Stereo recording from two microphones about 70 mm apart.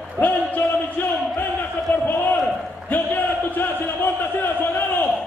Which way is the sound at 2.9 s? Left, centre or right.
Left.